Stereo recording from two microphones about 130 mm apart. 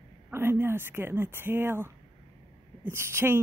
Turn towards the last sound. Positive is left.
turn(degrees=-20)  # may be behind; listen again after turning